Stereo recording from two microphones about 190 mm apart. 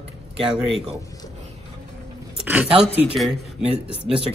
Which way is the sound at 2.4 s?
10° right (ahead or behind).